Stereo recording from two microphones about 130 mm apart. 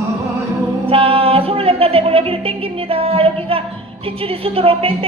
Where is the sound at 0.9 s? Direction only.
45° right (ahead or behind).